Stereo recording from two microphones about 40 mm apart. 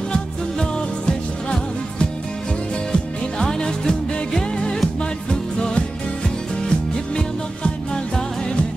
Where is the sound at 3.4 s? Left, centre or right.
Centre.